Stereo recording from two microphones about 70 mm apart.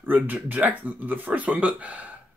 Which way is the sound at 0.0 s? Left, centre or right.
Right.